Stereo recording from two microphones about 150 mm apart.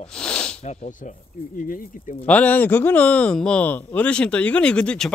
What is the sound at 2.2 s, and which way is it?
Speech, 10° left (ahead or behind).